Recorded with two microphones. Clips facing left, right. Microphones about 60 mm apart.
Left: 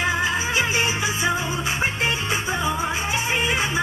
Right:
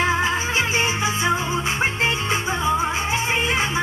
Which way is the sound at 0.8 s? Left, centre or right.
Right.